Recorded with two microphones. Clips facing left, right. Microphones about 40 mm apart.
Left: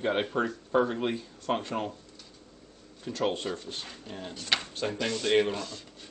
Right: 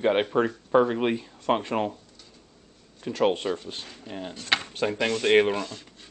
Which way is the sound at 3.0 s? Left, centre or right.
Right.